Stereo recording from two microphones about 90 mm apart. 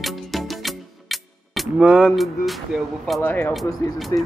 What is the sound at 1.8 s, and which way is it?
Music, 10° right (ahead or behind).